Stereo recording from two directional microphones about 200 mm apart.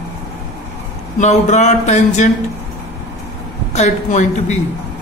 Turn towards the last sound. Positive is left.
turn(degrees=35)  # may be behind; listen again after turning